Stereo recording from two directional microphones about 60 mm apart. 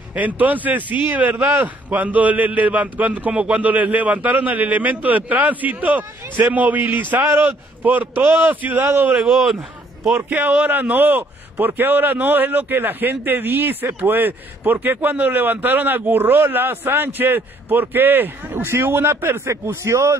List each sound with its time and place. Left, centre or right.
0.1 s a man's voice: right
8.8 s a man's voice: right
9.2 s speech: centre
10.1 s a man's voice: right